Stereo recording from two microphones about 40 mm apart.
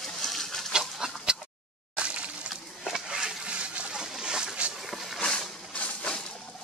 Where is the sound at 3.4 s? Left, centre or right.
Right.